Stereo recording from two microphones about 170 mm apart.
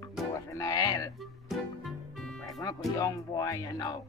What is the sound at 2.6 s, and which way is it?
Speech, 20° left (ahead or behind).